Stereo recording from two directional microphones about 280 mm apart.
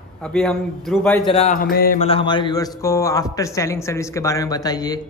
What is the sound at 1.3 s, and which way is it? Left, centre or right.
Speech, left.